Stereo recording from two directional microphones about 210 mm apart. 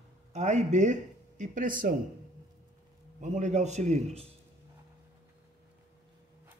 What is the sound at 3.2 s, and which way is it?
A man's voice, 35° right (ahead or behind).